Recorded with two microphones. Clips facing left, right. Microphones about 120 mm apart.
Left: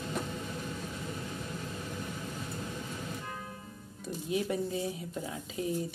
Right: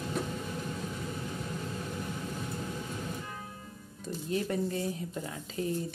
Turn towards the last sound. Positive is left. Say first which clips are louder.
# even
turn(degrees=5)  # may be behind; listen again after turning